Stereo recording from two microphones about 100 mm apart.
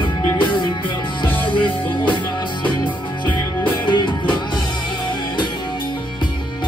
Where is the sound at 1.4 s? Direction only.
55° left (ahead or behind).